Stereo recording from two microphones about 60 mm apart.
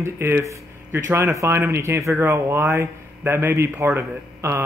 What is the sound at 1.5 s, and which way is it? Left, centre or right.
A man's voice, right.